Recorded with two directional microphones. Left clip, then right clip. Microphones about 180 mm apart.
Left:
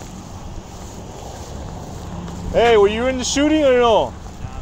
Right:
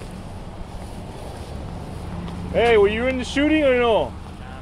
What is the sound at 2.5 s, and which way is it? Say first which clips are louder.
Speech: left 3 dB; 45° left (ahead or behind).